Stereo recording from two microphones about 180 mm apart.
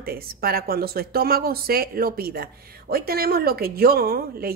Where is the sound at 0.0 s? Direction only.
55° right (ahead or behind).